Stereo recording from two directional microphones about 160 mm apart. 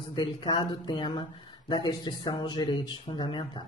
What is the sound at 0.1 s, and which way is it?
Speech, 30° left (ahead or behind).